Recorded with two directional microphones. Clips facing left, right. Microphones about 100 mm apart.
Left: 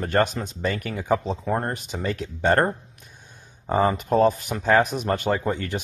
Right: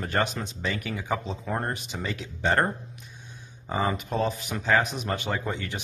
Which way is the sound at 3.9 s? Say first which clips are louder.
Left 8 dB; 45° left (ahead or behind).